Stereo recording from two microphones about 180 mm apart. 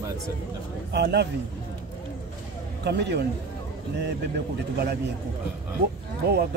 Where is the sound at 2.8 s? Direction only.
70° right (ahead or behind).